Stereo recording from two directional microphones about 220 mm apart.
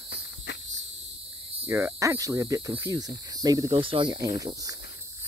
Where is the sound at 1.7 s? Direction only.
10° right (ahead or behind).